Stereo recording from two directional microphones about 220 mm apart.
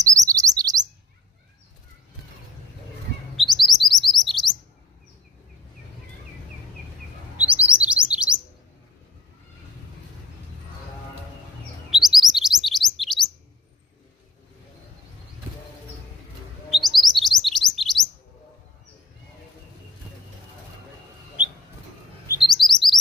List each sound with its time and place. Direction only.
0.0 s chirp: 15° right (ahead or behind)
3.3 s chirp: centre (ahead or behind)
7.3 s chirp: 5° right (ahead or behind)
11.9 s chirp: centre (ahead or behind)
16.7 s chirp: centre (ahead or behind)
22.4 s chirp: centre (ahead or behind)